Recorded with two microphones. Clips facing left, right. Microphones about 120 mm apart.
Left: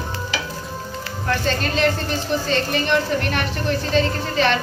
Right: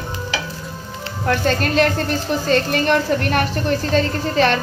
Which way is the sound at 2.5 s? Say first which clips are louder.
Right 5 dB; 45° right (ahead or behind).